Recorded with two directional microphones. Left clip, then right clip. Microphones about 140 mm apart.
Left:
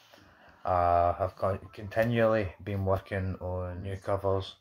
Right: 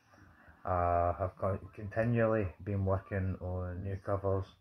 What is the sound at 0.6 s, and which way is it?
Speech, 10° left (ahead or behind).